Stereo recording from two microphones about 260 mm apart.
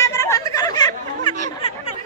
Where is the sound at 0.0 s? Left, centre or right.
Centre.